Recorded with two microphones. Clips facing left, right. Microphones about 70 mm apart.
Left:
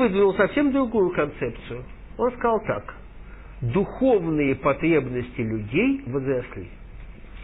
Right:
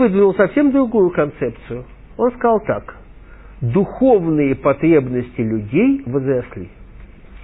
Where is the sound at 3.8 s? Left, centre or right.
Centre.